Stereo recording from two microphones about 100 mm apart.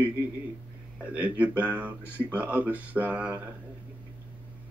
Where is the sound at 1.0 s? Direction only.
15° right (ahead or behind).